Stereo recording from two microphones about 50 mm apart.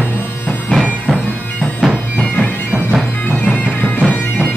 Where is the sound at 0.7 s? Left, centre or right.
Centre.